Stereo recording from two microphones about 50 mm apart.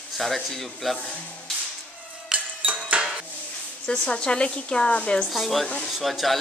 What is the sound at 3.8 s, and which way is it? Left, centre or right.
A woman's voice, centre.